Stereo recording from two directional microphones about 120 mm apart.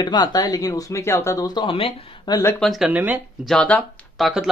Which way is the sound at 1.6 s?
45° left (ahead or behind).